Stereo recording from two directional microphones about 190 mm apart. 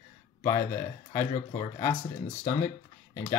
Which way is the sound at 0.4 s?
15° left (ahead or behind).